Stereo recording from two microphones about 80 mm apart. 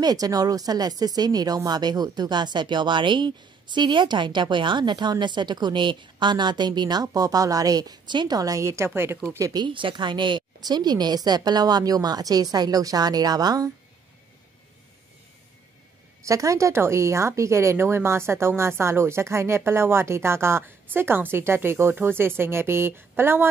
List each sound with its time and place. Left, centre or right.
0.0 s speech: right
8.4 s speech: right
9.4 s speech: right
9.7 s a woman's voice: right
16.3 s speech: right